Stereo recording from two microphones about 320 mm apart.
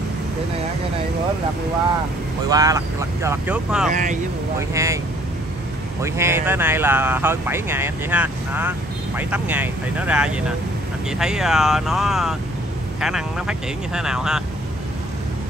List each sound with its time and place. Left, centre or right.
2.5 s speech: centre
3.9 s speech: right
4.6 s speech: centre
6.0 s speech: centre